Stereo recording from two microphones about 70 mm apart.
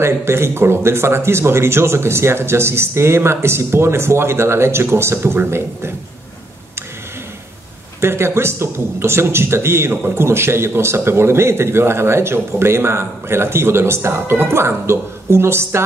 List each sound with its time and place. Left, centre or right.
0.0 s a man's voice: right
8.0 s a man's voice: right